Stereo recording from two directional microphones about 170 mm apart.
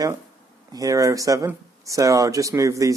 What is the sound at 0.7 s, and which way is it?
Speech, 20° right (ahead or behind).